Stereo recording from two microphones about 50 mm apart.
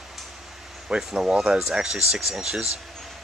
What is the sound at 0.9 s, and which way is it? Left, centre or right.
Speech, centre.